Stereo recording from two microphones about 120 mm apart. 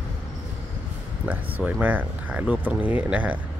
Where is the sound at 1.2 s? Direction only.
10° right (ahead or behind).